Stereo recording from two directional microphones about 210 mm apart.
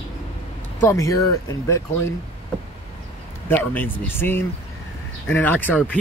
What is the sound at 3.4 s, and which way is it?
Speech, 10° left (ahead or behind).